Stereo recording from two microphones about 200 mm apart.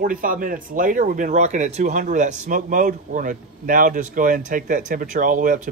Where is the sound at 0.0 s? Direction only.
45° right (ahead or behind).